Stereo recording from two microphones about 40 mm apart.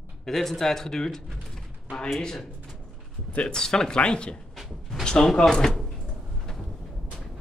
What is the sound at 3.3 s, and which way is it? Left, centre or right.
Speech, left.